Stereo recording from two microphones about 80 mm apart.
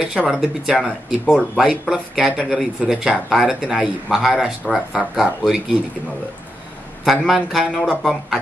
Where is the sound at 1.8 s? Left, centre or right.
Centre.